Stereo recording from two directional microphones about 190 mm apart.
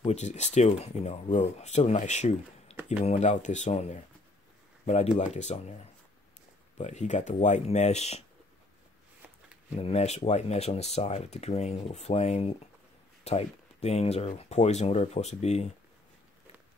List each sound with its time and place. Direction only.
0.0 s speech: 35° left (ahead or behind)
2.7 s a sound: 5° right (ahead or behind)
3.1 s speech: 40° left (ahead or behind)
5.1 s speech: 35° left (ahead or behind)
6.8 s speech: 40° left (ahead or behind)
9.8 s speech: 30° left (ahead or behind)